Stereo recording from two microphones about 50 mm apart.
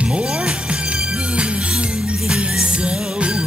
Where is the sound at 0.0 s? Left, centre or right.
Centre.